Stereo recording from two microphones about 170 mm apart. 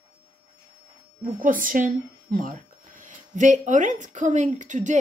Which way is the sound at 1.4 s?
55° right (ahead or behind).